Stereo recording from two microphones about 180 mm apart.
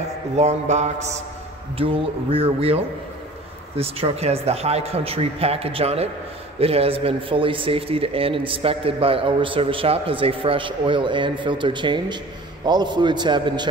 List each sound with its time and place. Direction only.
0.4 s a man's voice: 40° right (ahead or behind)